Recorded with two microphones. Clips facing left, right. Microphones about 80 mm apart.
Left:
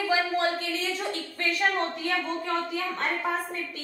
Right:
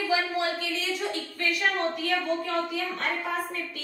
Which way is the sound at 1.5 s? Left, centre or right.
Left.